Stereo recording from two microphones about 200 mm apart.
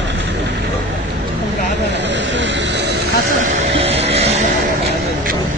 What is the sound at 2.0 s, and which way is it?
Vehicle, 65° right (ahead or behind).